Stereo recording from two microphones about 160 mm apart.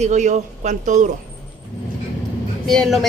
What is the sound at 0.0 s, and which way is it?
A man's voice, 50° right (ahead or behind).